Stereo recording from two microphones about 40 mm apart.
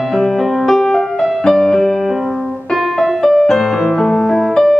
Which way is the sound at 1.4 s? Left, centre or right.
Centre.